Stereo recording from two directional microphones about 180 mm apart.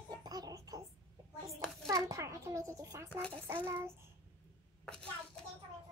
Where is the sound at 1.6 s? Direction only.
Centre (ahead or behind).